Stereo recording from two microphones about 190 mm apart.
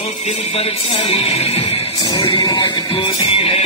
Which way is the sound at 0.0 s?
35° left (ahead or behind).